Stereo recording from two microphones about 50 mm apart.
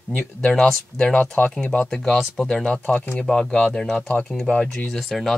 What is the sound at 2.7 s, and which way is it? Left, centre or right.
Speech, left.